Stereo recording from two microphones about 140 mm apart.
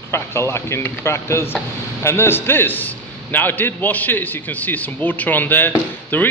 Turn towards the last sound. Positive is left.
turn(degrees=15)  # may be behind; listen again after turning